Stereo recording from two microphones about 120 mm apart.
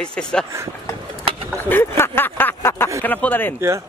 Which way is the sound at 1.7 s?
15° left (ahead or behind).